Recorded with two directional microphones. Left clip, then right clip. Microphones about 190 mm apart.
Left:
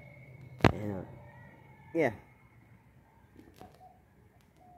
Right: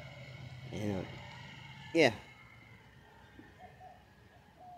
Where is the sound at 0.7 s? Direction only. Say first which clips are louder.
Right 1 dB; 10° right (ahead or behind).